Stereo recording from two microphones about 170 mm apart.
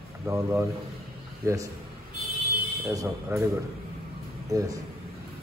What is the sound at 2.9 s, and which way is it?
Speech, 20° right (ahead or behind).